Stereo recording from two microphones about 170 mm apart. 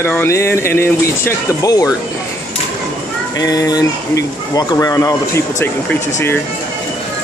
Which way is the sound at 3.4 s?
20° left (ahead or behind).